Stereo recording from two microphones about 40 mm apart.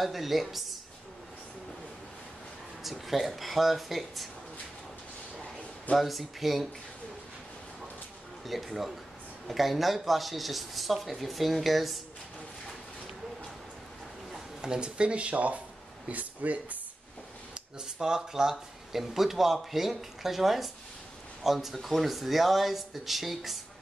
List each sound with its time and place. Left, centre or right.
0.0 s speech: centre
2.8 s speech: centre
5.9 s speech: centre
8.5 s speech: centre
14.6 s speech: right
17.9 s speech: centre